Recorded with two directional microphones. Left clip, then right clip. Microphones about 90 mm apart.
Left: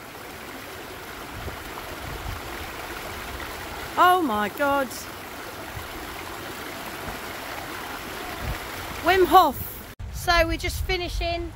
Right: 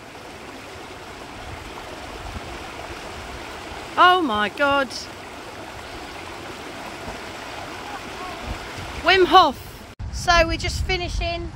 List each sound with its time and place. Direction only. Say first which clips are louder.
3.9 s speech: right 3 dB; 20° left (ahead or behind)
9.0 s speech: right 3 dB; 20° left (ahead or behind)
10.2 s speech: right 3 dB; 20° right (ahead or behind)